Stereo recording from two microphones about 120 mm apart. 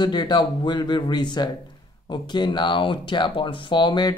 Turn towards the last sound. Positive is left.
turn(degrees=40)  # may be behind; listen again after turning